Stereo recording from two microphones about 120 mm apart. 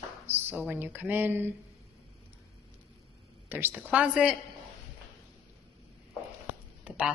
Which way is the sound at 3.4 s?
15° right (ahead or behind).